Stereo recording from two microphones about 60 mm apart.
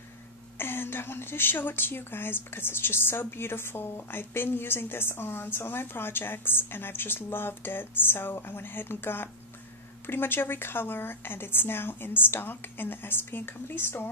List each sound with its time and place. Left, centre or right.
0.6 s speech: left